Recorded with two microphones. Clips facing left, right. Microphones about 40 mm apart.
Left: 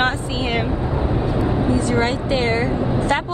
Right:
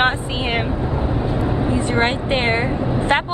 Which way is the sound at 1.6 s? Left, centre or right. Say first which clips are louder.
Right 1 dB; right.